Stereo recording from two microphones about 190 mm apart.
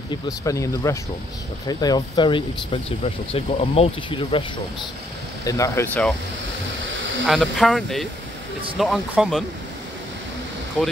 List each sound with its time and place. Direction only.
0.1 s speech: 15° left (ahead or behind)
7.2 s speech: centre (ahead or behind)
10.8 s speech: 5° left (ahead or behind)